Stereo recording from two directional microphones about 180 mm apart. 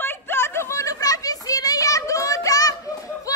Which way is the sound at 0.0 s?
10° left (ahead or behind).